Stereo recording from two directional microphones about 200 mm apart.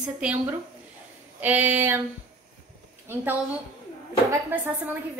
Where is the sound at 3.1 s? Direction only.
10° right (ahead or behind).